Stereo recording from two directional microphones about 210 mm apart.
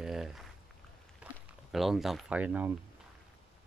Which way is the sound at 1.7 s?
Centre (ahead or behind).